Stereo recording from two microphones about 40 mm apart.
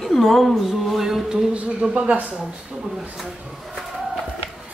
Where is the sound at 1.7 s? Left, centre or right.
Right.